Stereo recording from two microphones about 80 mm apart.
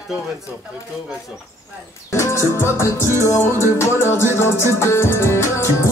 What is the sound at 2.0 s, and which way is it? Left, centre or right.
Music, left.